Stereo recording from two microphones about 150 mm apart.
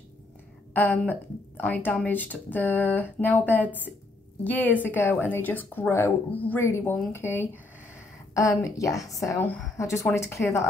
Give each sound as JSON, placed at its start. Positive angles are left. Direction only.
{"t": 0.7, "sound": "a woman's voice", "side_deg": 10}